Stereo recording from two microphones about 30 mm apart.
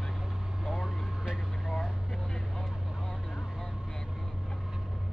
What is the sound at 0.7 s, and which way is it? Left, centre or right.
Vehicle, right.